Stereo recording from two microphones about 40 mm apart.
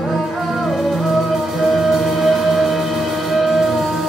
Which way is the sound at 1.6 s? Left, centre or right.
Centre.